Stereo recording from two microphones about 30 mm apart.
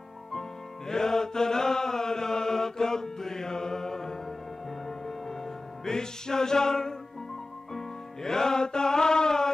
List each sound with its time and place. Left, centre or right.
0.3 s music: centre